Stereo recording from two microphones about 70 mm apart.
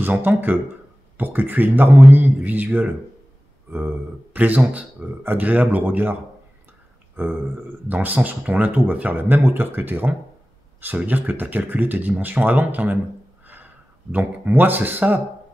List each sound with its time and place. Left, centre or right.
0.0 s speech: right
7.2 s a sound: right
7.9 s speech: right
14.1 s speech: right